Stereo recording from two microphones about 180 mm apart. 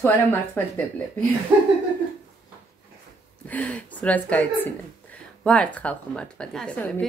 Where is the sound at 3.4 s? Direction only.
10° left (ahead or behind).